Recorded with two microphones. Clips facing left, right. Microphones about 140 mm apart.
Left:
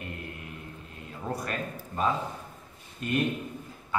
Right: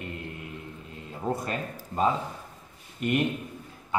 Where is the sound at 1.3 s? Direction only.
25° right (ahead or behind).